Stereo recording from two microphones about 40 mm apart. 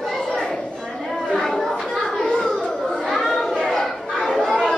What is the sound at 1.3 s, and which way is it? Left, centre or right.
Children playing, centre.